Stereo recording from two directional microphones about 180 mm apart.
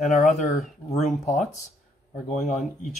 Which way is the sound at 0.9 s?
40° left (ahead or behind).